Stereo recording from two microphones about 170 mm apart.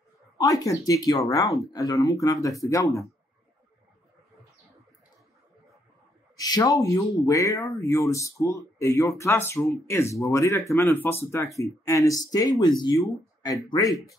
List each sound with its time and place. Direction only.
0.4 s speech: 20° left (ahead or behind)
6.3 s speech: 25° left (ahead or behind)